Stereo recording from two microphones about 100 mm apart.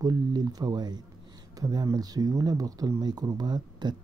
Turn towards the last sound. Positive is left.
turn(degrees=-45)  # may be behind; listen again after turning